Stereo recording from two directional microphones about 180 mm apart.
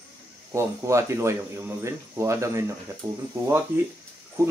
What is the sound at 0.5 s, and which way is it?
A man's voice, 15° right (ahead or behind).